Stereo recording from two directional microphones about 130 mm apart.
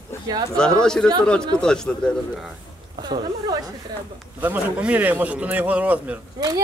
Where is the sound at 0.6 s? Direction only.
5° left (ahead or behind).